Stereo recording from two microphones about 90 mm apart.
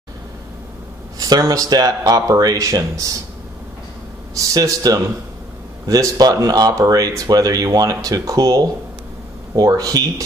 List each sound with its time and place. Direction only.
1.4 s speech: 40° right (ahead or behind)
4.4 s speech: 40° right (ahead or behind)